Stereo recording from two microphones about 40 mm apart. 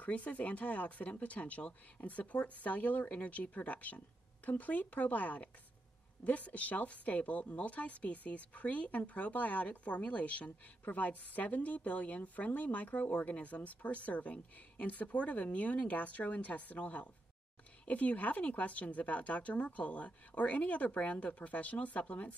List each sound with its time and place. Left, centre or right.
0.0 s a woman's voice: left